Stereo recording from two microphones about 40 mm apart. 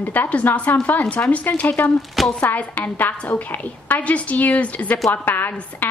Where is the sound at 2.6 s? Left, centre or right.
Left.